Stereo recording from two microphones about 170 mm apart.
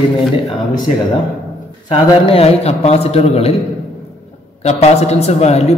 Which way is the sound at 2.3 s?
35° left (ahead or behind).